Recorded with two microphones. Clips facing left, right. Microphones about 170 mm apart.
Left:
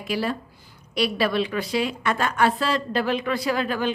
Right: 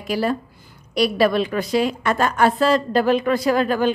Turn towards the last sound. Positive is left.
turn(degrees=-45)  # may be behind; listen again after turning